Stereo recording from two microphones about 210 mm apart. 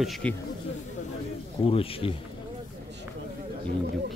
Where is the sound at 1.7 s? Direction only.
25° left (ahead or behind).